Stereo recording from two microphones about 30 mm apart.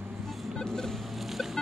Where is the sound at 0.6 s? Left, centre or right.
Centre.